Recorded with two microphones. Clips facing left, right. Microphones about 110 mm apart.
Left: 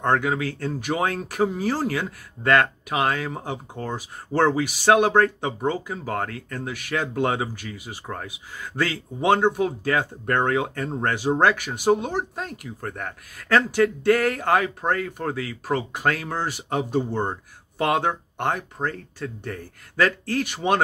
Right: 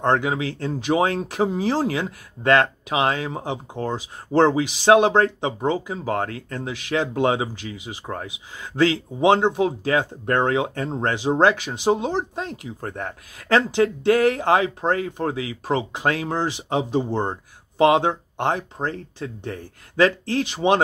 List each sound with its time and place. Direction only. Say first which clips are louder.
0.0 s speech: right 1 dB; 20° right (ahead or behind)